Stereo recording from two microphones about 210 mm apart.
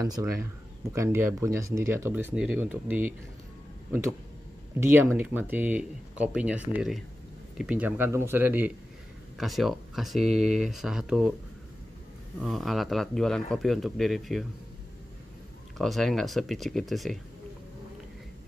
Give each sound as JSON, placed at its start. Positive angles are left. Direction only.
{"t": 0.0, "sound": "speech", "side_deg": -15}
{"t": 4.7, "sound": "speech", "side_deg": -10}
{"t": 12.4, "sound": "speech", "side_deg": 0}
{"t": 15.8, "sound": "speech", "side_deg": 0}